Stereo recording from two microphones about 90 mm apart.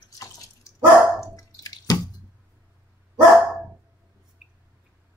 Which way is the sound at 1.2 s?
40° left (ahead or behind).